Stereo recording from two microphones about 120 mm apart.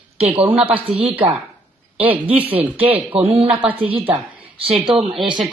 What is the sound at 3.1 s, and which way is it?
Speech, 50° right (ahead or behind).